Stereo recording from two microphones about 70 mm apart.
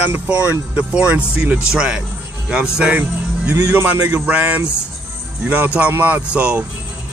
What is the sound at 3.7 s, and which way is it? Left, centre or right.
Speech, right.